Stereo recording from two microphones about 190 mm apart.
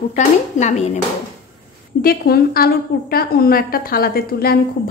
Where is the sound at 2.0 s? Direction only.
50° left (ahead or behind).